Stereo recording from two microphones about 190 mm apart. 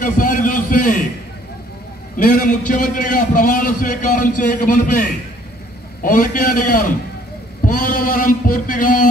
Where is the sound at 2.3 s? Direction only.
45° left (ahead or behind).